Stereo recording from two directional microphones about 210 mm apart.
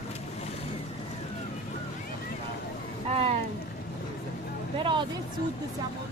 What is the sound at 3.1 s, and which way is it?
Boat, 30° right (ahead or behind).